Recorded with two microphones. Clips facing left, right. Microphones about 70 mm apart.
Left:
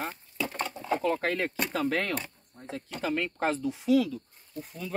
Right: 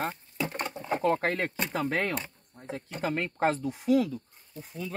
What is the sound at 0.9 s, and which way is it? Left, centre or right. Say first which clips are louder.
Speech: right 1 dB; right.